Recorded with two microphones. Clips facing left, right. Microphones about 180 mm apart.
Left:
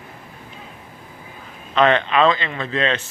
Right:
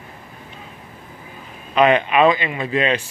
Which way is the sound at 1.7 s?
10° right (ahead or behind).